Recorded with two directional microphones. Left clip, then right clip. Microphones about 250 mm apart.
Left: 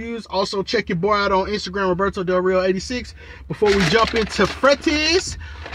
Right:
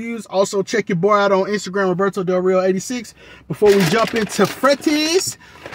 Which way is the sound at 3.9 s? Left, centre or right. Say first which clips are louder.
Even; centre.